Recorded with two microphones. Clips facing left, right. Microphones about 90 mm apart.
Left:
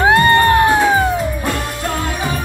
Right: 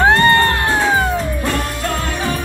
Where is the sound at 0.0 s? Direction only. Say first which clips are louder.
Left 1 dB; 15° left (ahead or behind).